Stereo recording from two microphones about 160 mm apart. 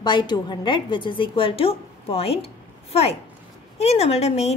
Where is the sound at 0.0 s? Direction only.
30° left (ahead or behind).